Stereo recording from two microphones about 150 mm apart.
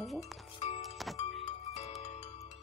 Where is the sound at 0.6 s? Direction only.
45° left (ahead or behind).